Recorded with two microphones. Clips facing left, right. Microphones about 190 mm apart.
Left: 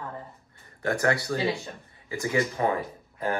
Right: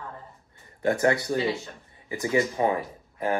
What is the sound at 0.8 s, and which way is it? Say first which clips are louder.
Speech: right 3 dB; 20° right (ahead or behind).